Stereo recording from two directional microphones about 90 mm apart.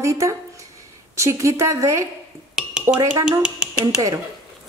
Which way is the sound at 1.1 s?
35° right (ahead or behind).